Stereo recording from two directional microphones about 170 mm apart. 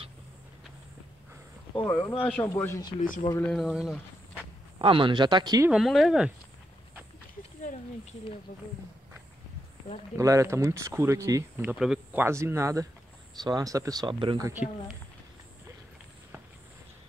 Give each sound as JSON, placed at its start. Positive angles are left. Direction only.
{"t": 1.8, "sound": "speech", "side_deg": 15}
{"t": 3.3, "sound": "speech", "side_deg": 5}
{"t": 4.7, "sound": "speech", "side_deg": -30}
{"t": 5.7, "sound": "speech", "side_deg": 0}
{"t": 10.1, "sound": "speech", "side_deg": -20}